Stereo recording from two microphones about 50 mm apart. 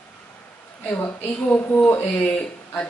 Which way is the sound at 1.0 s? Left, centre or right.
Left.